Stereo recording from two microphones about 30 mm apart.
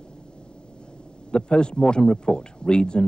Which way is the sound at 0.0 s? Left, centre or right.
Left.